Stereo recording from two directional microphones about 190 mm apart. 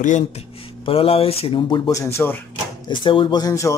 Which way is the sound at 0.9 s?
30° left (ahead or behind).